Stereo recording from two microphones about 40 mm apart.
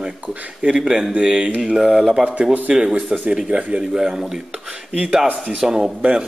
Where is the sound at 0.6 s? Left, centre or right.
Right.